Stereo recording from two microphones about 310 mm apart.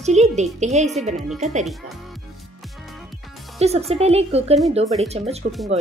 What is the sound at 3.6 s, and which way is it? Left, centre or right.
A woman's voice, centre.